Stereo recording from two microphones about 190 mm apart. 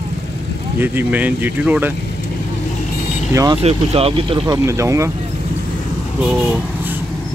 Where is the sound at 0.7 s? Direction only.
10° right (ahead or behind).